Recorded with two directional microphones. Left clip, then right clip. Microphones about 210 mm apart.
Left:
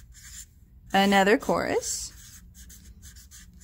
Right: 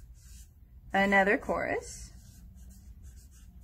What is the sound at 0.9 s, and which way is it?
Speech, 40° left (ahead or behind).